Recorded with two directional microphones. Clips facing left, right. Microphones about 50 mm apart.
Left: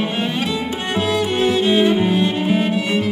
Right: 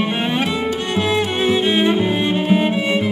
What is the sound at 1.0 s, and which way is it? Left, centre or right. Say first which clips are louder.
Music: left 1 dB; right.